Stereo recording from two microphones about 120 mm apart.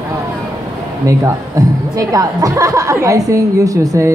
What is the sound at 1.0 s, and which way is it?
Speech, 30° right (ahead or behind).